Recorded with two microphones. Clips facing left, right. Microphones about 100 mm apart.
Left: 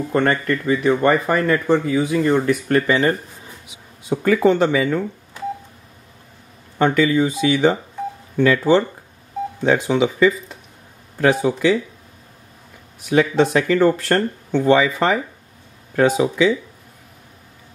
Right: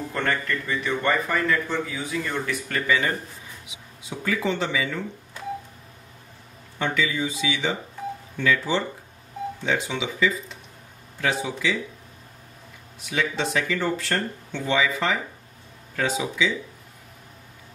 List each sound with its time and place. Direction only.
0.1 s speech: 50° left (ahead or behind)
2.9 s speech: 35° left (ahead or behind)
4.1 s speech: 50° left (ahead or behind)
6.8 s speech: 55° left (ahead or behind)
13.0 s speech: 50° left (ahead or behind)